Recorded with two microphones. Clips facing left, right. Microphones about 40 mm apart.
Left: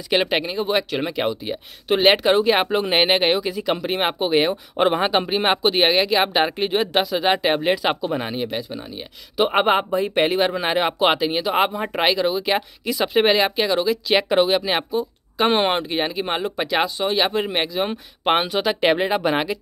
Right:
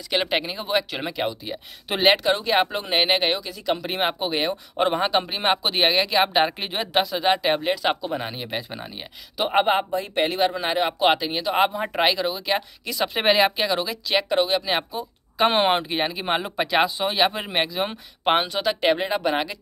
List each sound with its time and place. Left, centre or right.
0.3 s speech: centre; by 3.7 s left
3.7 s speech: centre
4.0 s speech: centre
7.2 s speech: centre
14.1 s speech: left
15.0 s speech: centre